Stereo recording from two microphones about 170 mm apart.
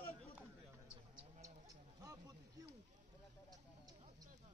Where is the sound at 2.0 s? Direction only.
20° right (ahead or behind).